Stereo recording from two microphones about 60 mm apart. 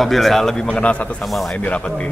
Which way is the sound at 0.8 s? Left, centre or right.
Left.